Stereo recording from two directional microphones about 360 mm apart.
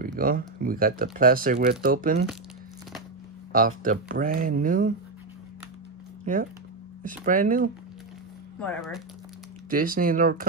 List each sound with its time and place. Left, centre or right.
0.0 s speech: right
3.5 s speech: right
7.0 s speech: right
8.5 s speech: centre
9.7 s speech: right